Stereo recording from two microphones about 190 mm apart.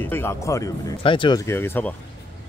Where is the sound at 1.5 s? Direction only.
10° left (ahead or behind).